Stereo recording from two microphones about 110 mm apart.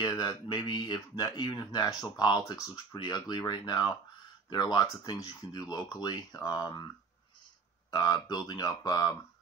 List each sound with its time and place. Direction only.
0.1 s speech: 40° left (ahead or behind)
7.9 s speech: 35° left (ahead or behind)